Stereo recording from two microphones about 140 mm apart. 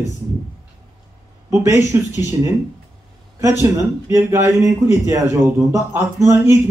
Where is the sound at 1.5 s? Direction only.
20° right (ahead or behind).